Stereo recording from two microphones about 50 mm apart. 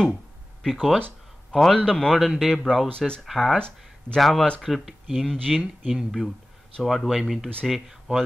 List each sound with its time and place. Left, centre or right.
0.1 s a sound: centre
1.7 s speech: centre
2.1 s a man's voice: centre
3.5 s speech: centre
4.2 s a man's voice: centre
5.9 s a man's voice: centre
8.1 s speech: right